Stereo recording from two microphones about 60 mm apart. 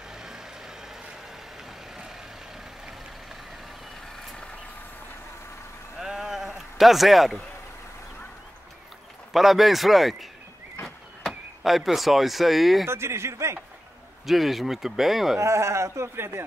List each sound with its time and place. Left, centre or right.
0.1 s vehicle: centre
5.9 s sheep: centre
9.3 s speech: centre
11.2 s speech: centre
12.8 s speech: right
14.2 s speech: centre
15.3 s speech: right